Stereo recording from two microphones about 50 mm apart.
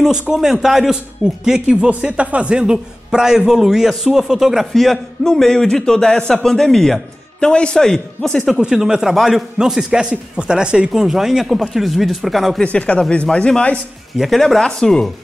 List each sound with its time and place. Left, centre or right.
0.3 s a man's voice: centre
8.5 s speech: centre
12.6 s speech: left
14.1 s speech: centre
14.6 s a man's voice: centre